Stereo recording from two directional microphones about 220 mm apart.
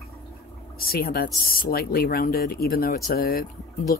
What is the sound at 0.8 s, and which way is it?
Speech, 40° left (ahead or behind).